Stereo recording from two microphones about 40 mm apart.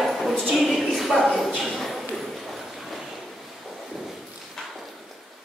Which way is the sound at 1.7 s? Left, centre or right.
Centre.